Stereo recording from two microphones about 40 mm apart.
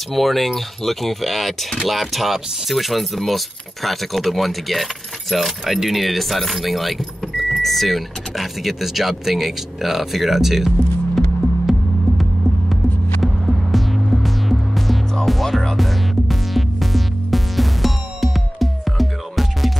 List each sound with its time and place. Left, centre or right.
0.1 s speech: centre
13.2 s music: centre